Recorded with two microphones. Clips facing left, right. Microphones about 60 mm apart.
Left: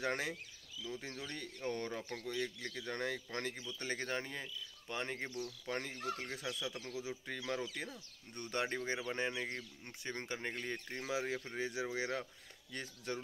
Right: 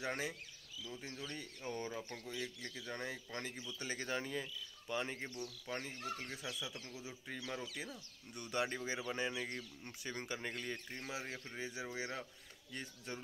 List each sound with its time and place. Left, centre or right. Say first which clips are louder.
0.0 s speech: left 3 dB; left
3.8 s speech: left 1 dB; left
5.7 s speech: left 3 dB; left
8.4 s speech: left 1 dB; left
11.0 s speech: left 6 dB; left
11.3 s speech: left 5 dB; left